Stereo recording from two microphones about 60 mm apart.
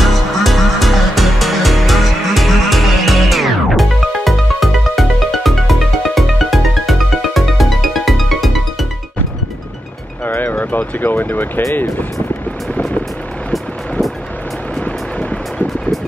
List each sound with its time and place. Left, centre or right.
0.0 s music: centre
10.2 s vehicle: left
13.5 s vehicle: centre
14.9 s vehicle: left